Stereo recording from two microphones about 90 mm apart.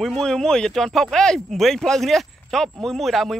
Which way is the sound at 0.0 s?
5° left (ahead or behind).